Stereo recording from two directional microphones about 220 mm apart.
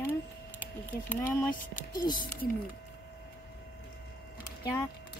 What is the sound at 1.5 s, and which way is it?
Speech, 35° left (ahead or behind).